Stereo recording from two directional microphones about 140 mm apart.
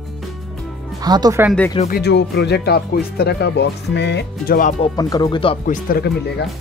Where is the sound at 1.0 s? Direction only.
30° right (ahead or behind).